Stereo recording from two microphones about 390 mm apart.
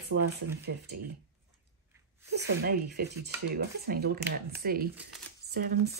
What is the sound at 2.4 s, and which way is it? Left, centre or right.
Speech, right.